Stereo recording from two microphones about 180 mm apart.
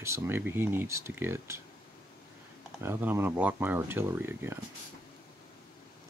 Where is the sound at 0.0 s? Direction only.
15° right (ahead or behind).